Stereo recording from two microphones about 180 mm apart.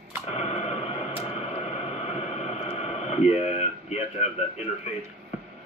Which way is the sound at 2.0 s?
35° left (ahead or behind).